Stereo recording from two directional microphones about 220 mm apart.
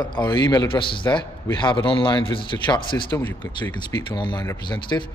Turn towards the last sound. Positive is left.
turn(degrees=20)  # may be behind; listen again after turning